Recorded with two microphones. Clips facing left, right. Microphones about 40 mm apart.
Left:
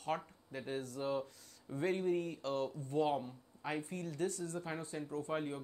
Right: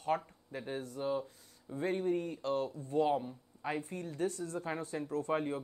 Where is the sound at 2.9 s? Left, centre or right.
Centre.